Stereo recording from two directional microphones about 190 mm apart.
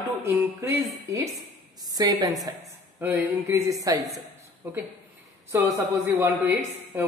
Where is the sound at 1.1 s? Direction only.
15° right (ahead or behind).